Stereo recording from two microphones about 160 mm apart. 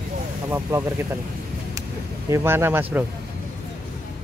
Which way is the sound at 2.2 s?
15° right (ahead or behind).